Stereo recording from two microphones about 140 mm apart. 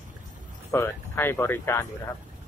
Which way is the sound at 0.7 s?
20° left (ahead or behind).